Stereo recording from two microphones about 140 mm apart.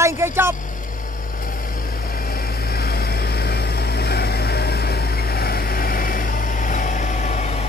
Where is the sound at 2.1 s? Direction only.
90° left.